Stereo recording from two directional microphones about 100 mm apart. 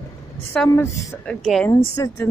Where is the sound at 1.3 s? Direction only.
5° left (ahead or behind).